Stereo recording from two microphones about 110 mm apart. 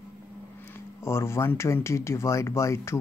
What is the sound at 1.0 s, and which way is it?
Speech, 25° left (ahead or behind).